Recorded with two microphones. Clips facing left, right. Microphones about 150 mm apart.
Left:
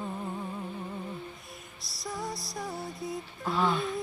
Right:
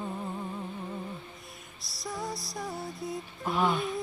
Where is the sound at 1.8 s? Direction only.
Centre (ahead or behind).